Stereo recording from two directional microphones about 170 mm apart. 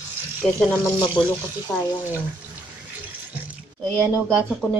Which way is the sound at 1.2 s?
25° left (ahead or behind).